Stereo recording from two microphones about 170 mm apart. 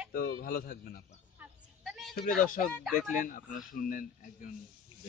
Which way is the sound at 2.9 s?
50° left (ahead or behind).